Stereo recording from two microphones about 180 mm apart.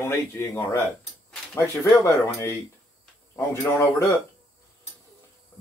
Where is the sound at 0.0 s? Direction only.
15° left (ahead or behind).